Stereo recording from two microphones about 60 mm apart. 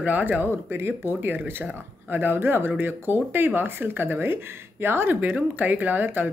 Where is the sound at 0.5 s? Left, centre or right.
Right.